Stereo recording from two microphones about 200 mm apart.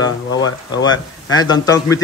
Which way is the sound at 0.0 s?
20° left (ahead or behind).